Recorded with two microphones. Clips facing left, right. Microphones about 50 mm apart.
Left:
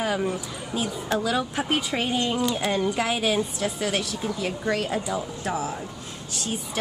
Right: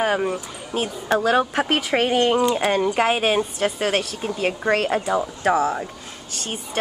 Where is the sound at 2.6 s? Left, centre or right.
Right.